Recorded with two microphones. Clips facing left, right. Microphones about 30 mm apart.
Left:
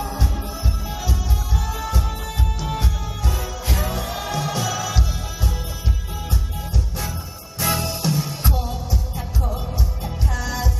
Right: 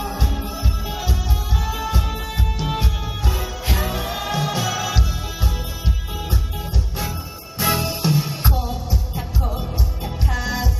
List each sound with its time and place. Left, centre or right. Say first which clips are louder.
0.0 s music: right 1 dB; centre
1.7 s music: right 3 dB; right
7.5 s music: right 2 dB; centre